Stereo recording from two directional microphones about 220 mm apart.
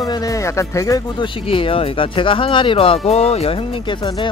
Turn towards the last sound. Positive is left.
turn(degrees=20)  # may be behind; listen again after turning